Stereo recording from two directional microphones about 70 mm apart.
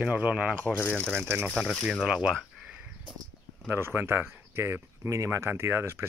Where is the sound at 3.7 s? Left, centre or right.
Right.